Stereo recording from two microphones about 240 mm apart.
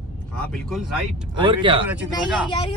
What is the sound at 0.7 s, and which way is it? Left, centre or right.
Speech, centre.